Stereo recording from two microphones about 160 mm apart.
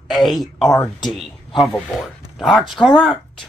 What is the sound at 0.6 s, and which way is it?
Speech, 20° left (ahead or behind).